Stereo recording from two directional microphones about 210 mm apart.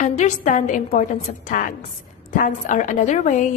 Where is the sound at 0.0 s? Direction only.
35° left (ahead or behind).